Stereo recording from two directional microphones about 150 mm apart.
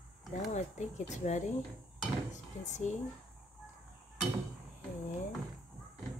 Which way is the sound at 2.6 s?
50° left (ahead or behind).